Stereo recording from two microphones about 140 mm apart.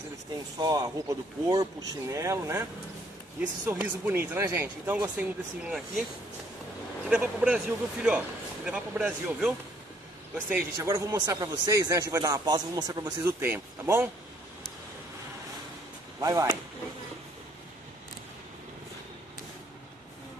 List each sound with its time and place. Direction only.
0.6 s speech: 25° right (ahead or behind)
3.3 s speech: 10° right (ahead or behind)
7.1 s speech: 10° right (ahead or behind)
10.5 s speech: 20° right (ahead or behind)
13.2 s speech: 15° right (ahead or behind)
16.2 s speech: 25° right (ahead or behind)